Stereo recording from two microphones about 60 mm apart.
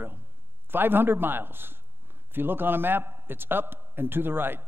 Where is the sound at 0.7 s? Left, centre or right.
Right.